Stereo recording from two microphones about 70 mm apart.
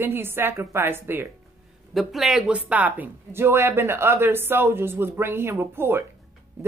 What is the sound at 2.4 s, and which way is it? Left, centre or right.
A woman's voice, right.